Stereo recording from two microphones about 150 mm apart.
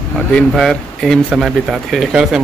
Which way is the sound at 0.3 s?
5° left (ahead or behind).